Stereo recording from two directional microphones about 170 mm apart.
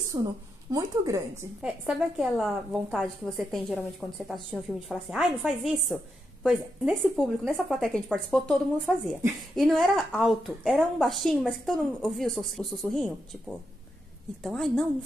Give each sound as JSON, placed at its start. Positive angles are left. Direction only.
{"t": 0.1, "sound": "speech", "side_deg": -25}
{"t": 1.4, "sound": "a woman's voice", "side_deg": -5}